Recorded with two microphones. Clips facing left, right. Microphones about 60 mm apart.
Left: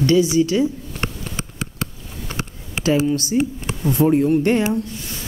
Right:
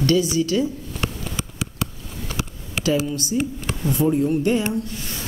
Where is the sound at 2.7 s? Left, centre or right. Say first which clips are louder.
Left 4 dB; left.